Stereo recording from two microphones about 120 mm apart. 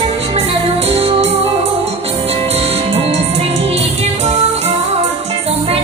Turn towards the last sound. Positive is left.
turn(degrees=-60)  # may be behind; listen again after turning